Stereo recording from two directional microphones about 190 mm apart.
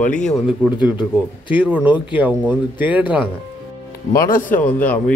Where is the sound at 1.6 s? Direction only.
5° right (ahead or behind).